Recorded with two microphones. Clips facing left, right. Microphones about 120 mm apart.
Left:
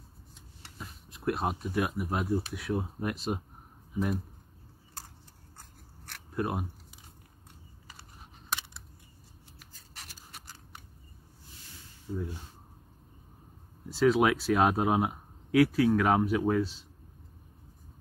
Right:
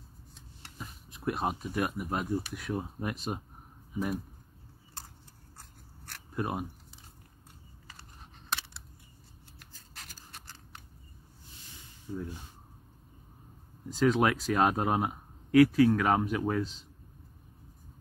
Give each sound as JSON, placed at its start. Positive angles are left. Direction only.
{"t": 0.7, "sound": "speech", "side_deg": 0}
{"t": 6.0, "sound": "camera", "side_deg": 0}
{"t": 7.9, "sound": "computer keyboard", "side_deg": 5}
{"t": 9.6, "sound": "scissors", "side_deg": 5}
{"t": 12.1, "sound": "speech", "side_deg": 5}
{"t": 13.8, "sound": "speech", "side_deg": 5}